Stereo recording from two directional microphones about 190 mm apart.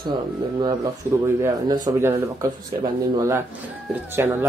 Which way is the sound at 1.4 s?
20° right (ahead or behind).